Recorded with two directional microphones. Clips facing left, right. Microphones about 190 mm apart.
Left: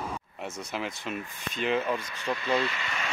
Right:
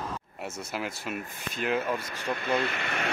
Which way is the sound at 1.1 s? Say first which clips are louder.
Even; 45° right (ahead or behind).